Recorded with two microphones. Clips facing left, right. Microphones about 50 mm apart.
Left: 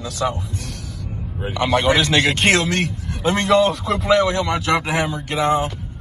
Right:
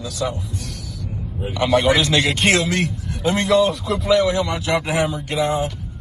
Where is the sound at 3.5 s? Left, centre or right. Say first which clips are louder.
Left 1 dB; left.